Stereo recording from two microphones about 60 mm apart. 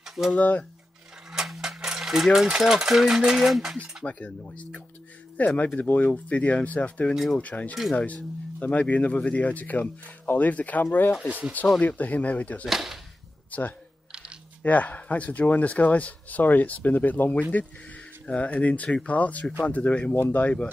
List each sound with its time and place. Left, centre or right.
0.0 s a sound: centre
0.3 s speech: left
1.3 s a sound: centre
2.6 s speech: centre
4.0 s speech: left
11.2 s speech: centre
11.8 s speech: left
12.6 s speech: centre
13.5 s speech: left